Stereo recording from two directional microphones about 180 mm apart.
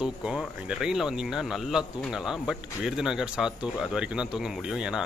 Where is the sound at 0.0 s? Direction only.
5° right (ahead or behind).